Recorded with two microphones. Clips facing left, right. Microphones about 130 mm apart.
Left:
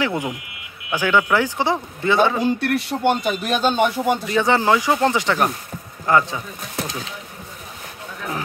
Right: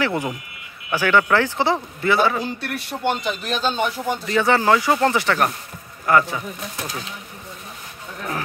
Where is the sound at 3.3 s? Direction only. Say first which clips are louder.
Left 4 dB; 50° left (ahead or behind).